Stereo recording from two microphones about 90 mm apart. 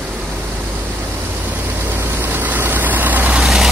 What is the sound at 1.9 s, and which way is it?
Vehicle, 25° right (ahead or behind).